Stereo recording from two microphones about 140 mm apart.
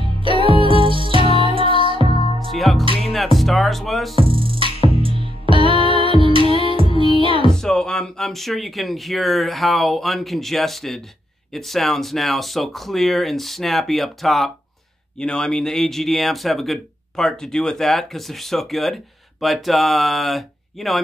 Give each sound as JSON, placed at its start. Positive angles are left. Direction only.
{"t": 0.0, "sound": "music", "side_deg": -35}
{"t": 2.5, "sound": "music", "side_deg": 0}
{"t": 4.1, "sound": "music", "side_deg": -40}
{"t": 7.5, "sound": "speech", "side_deg": 5}